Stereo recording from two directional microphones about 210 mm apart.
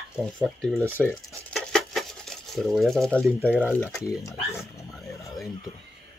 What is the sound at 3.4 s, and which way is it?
Speech, 5° right (ahead or behind).